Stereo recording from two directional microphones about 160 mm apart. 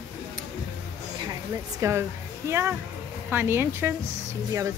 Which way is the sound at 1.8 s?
20° right (ahead or behind).